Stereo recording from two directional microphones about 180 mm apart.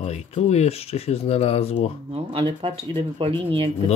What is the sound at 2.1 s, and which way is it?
Speech, 30° right (ahead or behind).